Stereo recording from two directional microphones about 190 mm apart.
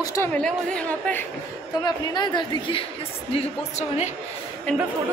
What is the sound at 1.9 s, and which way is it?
Speech, 25° left (ahead or behind).